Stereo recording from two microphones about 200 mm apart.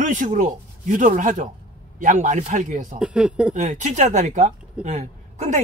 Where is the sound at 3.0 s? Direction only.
5° right (ahead or behind).